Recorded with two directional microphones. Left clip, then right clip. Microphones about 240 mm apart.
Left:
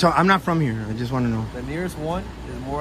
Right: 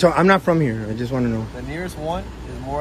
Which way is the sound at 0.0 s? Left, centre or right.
Centre.